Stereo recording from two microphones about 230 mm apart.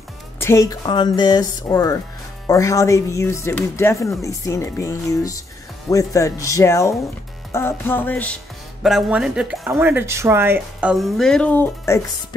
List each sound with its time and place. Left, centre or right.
0.4 s speech: centre